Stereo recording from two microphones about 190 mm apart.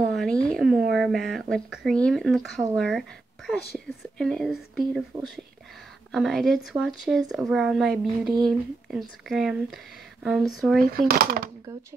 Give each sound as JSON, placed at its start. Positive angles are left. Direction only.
{"t": 0.0, "sound": "speech", "side_deg": 5}
{"t": 6.1, "sound": "speech", "side_deg": 0}
{"t": 10.8, "sound": "speech", "side_deg": -50}